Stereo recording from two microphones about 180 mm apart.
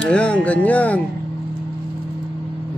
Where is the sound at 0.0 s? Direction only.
5° left (ahead or behind).